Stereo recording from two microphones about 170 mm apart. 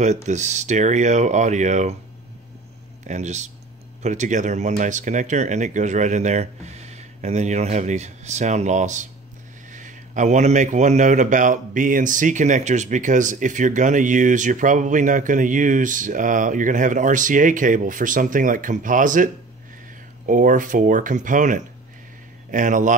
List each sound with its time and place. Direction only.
0.0 s speech: 45° right (ahead or behind)
3.1 s speech: 45° right (ahead or behind)